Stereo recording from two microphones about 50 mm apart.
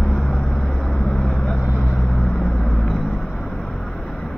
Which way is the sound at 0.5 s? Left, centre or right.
Centre.